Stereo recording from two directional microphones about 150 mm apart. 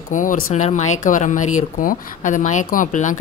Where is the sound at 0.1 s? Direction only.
60° left (ahead or behind).